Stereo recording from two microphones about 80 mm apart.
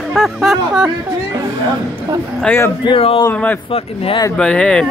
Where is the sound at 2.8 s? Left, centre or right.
Left.